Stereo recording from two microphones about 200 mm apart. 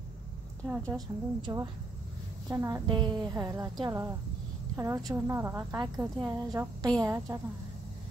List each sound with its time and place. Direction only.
0.7 s a woman's voice: 15° right (ahead or behind)